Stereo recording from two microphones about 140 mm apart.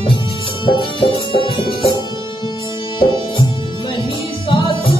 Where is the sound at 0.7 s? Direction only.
35° left (ahead or behind).